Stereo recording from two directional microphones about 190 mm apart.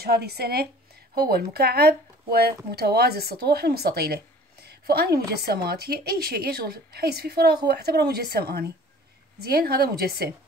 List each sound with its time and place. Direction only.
0.0 s speech: 55° right (ahead or behind)